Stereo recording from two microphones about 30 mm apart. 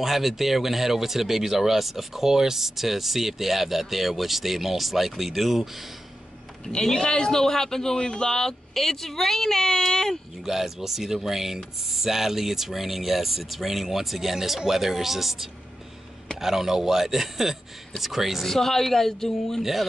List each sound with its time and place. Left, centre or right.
0.0 s speech: centre
6.8 s a man's voice: left
8.7 s a man's voice: centre
10.4 s speech: centre
18.4 s a man's voice: centre
19.6 s speech: centre